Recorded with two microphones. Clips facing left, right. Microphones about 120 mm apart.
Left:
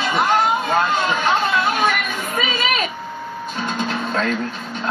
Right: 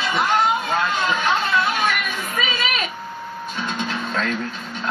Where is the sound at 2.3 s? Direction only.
40° left (ahead or behind).